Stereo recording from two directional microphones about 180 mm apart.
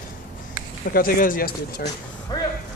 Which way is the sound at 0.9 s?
50° left (ahead or behind).